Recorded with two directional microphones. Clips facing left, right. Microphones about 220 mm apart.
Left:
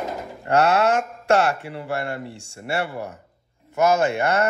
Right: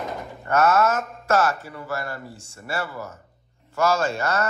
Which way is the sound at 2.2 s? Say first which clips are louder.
Left 5 dB; 70° left (ahead or behind).